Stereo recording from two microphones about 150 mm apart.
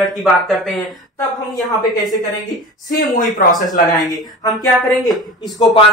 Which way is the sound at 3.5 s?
25° left (ahead or behind).